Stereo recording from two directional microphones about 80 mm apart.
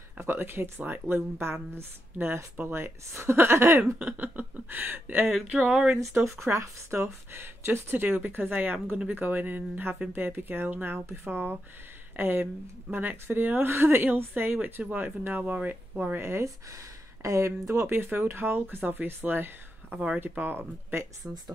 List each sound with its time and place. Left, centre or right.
0.2 s speech: right
4.0 s speech: right
5.7 s speech: centre
6.1 s speech: right
19.9 s speech: centre; by 21.1 s right